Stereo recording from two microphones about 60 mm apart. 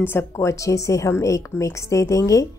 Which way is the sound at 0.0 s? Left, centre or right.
Left.